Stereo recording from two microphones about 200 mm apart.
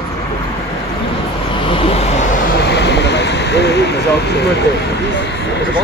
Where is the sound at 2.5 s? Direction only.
55° left (ahead or behind).